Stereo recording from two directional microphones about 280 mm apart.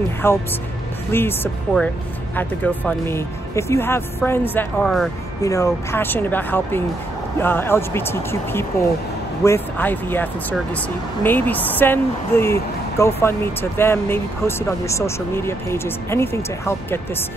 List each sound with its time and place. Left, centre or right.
0.2 s speech: centre